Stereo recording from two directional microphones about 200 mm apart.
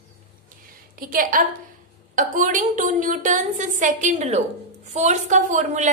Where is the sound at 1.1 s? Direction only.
45° right (ahead or behind).